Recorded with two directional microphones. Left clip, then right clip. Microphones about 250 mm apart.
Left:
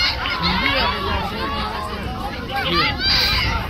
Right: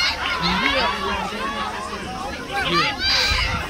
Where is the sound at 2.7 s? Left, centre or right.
Centre.